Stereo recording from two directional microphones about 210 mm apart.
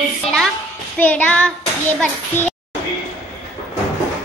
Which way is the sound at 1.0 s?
5° left (ahead or behind).